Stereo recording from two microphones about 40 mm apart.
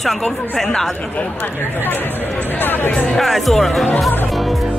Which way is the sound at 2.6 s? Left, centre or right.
Left.